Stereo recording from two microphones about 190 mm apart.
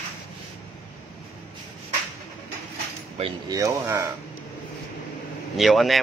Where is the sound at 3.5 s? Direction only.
15° right (ahead or behind).